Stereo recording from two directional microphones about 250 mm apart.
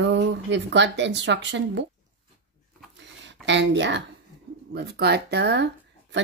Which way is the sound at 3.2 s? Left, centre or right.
Right.